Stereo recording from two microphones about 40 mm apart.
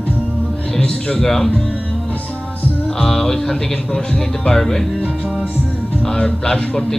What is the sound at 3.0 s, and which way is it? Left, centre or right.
Speech, centre.